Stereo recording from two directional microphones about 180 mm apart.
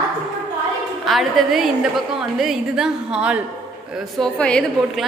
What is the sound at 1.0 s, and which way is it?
A woman's voice, centre (ahead or behind).